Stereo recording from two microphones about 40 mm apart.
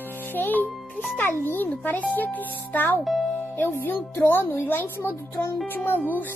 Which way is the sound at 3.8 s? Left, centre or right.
Left.